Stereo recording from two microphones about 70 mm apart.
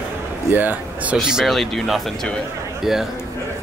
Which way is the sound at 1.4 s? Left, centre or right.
Centre.